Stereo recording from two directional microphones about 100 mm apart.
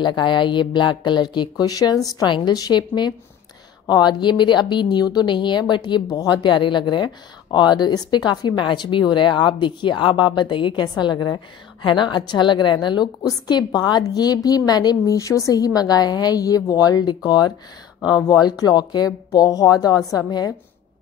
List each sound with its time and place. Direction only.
0.0 s a woman's voice: 50° left (ahead or behind)